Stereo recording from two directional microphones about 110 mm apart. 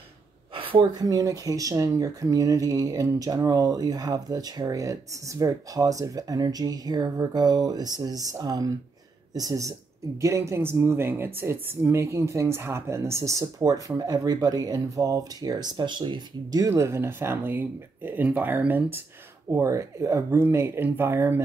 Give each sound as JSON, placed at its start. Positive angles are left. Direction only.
{"t": 0.6, "sound": "a sound", "side_deg": -55}
{"t": 0.9, "sound": "speech", "side_deg": -35}
{"t": 16.6, "sound": "speech", "side_deg": -25}